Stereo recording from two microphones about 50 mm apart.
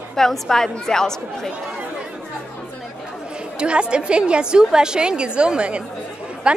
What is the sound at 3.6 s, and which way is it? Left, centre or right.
A woman's voice, centre.